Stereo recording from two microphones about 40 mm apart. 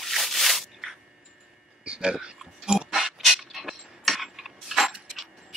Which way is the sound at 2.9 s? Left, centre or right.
Centre.